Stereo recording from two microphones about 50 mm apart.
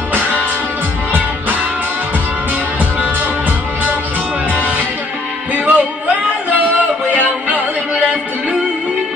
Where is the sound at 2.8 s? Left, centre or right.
Right.